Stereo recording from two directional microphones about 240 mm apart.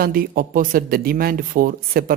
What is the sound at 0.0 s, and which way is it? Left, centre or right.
Speech, right.